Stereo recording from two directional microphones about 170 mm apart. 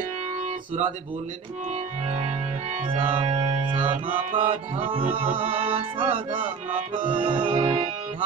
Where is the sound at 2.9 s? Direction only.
30° right (ahead or behind).